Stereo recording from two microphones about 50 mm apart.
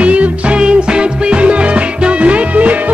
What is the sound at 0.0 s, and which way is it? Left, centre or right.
Music, right.